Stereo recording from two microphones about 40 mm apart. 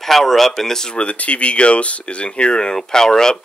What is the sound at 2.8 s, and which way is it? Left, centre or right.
Speech, centre.